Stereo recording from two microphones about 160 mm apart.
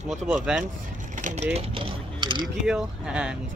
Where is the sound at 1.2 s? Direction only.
50° right (ahead or behind).